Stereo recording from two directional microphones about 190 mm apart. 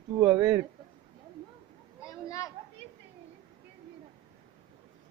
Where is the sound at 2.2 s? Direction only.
15° left (ahead or behind).